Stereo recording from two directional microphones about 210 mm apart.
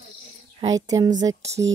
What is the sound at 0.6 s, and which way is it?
Speech, 15° right (ahead or behind).